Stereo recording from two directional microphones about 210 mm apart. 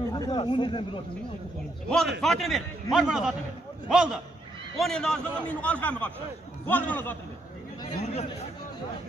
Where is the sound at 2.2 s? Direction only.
Centre (ahead or behind).